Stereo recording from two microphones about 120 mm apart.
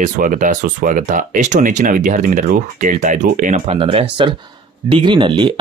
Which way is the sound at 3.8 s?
50° right (ahead or behind).